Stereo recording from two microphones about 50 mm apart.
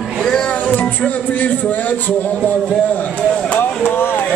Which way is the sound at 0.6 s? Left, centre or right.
Left.